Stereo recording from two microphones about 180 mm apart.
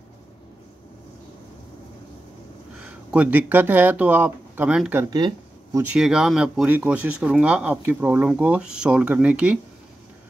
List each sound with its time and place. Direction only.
2.8 s speech: 5° right (ahead or behind)
5.1 s a sound: 20° right (ahead or behind)
5.8 s speech: 5° right (ahead or behind)